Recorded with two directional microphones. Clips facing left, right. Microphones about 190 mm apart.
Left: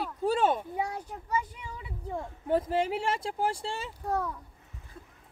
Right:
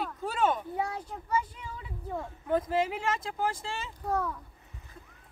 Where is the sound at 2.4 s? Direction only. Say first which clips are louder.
Left 1 dB; 30° left (ahead or behind).